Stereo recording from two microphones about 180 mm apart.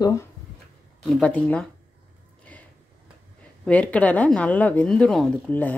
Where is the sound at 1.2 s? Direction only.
5° left (ahead or behind).